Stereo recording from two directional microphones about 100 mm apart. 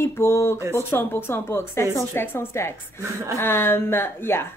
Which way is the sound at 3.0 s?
30° right (ahead or behind).